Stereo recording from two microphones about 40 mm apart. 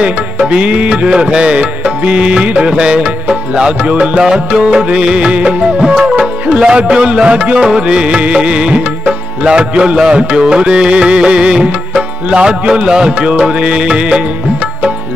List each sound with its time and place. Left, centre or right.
0.0 s music: right
4.6 s music: centre